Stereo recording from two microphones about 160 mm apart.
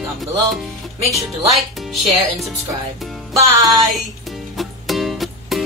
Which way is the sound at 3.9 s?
Centre (ahead or behind).